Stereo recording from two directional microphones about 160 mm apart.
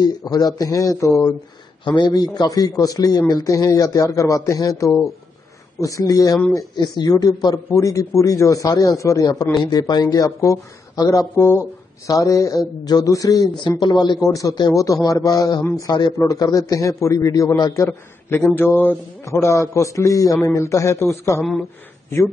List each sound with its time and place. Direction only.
0.0 s speech: 25° left (ahead or behind)
17.8 s a man's voice: 10° left (ahead or behind)